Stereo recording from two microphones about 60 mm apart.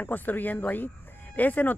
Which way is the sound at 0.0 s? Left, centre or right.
Left.